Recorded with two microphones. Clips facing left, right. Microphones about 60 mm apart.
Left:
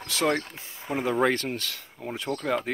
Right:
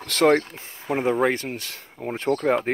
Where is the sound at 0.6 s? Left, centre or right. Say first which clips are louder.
Right 4 dB; right.